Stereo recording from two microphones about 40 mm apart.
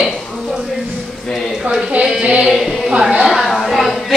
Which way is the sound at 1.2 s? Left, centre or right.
Centre.